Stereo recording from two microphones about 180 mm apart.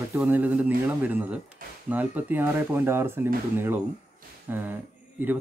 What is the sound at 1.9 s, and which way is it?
Speech, 10° right (ahead or behind).